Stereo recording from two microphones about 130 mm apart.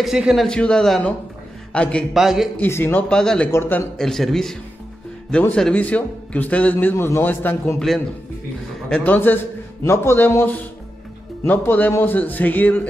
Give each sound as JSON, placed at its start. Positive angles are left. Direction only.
{"t": 0.0, "sound": "a man's voice", "side_deg": -5}
{"t": 2.1, "sound": "a man's voice", "side_deg": -5}
{"t": 2.5, "sound": "a man's voice", "side_deg": 15}
{"t": 3.5, "sound": "a man's voice", "side_deg": 15}
{"t": 4.0, "sound": "a man's voice", "side_deg": 0}
{"t": 8.8, "sound": "a man's voice", "side_deg": 10}